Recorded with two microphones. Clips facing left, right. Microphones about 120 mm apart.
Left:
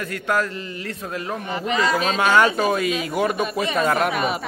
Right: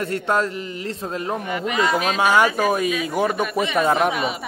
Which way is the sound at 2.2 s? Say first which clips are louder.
Even; 15° right (ahead or behind).